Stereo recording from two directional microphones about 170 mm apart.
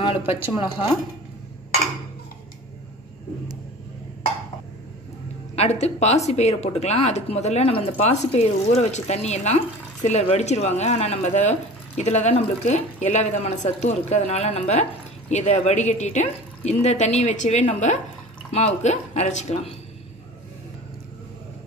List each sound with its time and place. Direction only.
0.0 s speech: 35° left (ahead or behind)
5.6 s speech: 40° left (ahead or behind)